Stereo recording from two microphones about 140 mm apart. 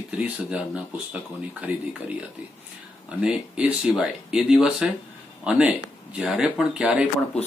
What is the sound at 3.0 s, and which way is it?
Speech, 10° right (ahead or behind).